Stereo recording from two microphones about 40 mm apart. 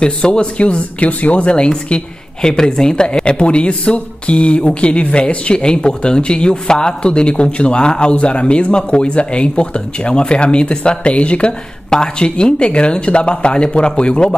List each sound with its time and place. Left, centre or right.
0.0 s speech: left